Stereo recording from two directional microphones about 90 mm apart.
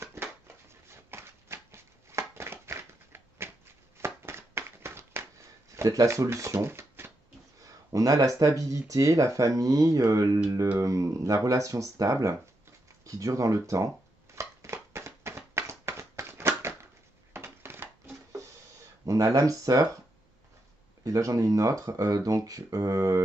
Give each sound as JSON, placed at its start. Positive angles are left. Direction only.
{"t": 0.0, "sound": "a sound", "side_deg": -30}
{"t": 5.8, "sound": "speech", "side_deg": -35}
{"t": 7.6, "sound": "speech", "side_deg": -40}
{"t": 13.7, "sound": "shuffling cards", "side_deg": -35}
{"t": 17.3, "sound": "a sound", "side_deg": -25}
{"t": 19.0, "sound": "speech", "side_deg": -35}
{"t": 21.0, "sound": "speech", "side_deg": -35}